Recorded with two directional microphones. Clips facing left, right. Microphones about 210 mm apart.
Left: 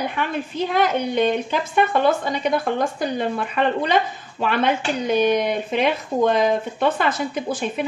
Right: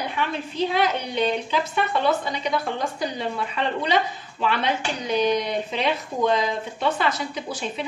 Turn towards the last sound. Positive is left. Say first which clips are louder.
# left 6 dB
turn(degrees=55)  # may be behind; listen again after turning